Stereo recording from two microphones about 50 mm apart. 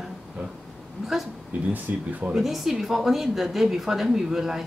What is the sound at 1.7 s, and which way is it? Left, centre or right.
Speech, right.